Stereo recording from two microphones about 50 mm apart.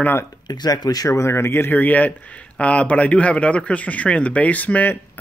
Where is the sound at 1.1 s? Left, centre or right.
Left.